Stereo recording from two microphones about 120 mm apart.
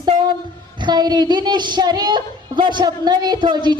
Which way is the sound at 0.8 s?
35° right (ahead or behind).